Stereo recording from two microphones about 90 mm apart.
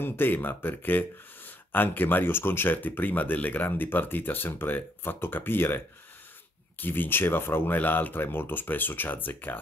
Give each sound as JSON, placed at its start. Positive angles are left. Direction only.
{"t": 0.0, "sound": "speech", "side_deg": 25}
{"t": 6.8, "sound": "speech", "side_deg": 20}